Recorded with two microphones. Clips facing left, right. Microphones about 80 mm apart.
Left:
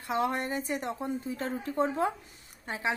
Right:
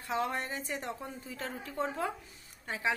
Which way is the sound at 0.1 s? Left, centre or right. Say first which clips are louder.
Left 4 dB; centre.